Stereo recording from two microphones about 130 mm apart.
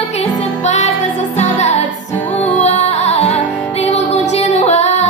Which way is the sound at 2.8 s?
55° left (ahead or behind).